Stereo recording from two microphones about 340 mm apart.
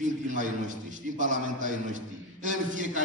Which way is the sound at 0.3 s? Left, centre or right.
Right.